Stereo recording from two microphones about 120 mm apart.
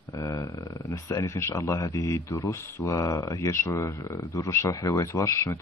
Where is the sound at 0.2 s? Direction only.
30° left (ahead or behind).